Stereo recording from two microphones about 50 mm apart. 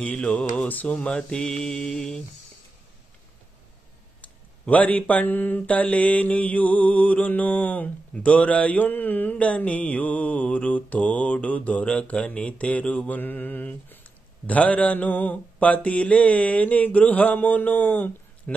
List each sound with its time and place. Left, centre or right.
0.0 s mantra: left
0.7 s mantra: left
0.9 s mantra: centre
4.2 s mantra: left